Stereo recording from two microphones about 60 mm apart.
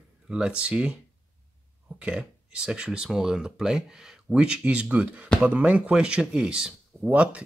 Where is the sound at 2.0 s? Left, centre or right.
Centre.